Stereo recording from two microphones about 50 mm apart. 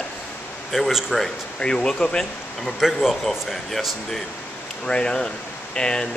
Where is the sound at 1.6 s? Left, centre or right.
Centre.